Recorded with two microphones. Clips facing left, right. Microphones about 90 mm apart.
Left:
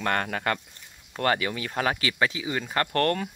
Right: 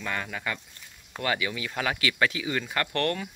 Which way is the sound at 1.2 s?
40° left (ahead or behind).